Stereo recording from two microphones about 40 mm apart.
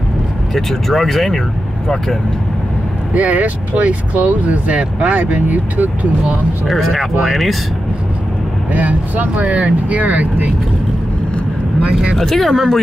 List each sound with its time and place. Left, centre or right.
0.6 s speech: centre
3.2 s speech: right
6.9 s speech: centre
8.7 s speech: right
12.2 s speech: centre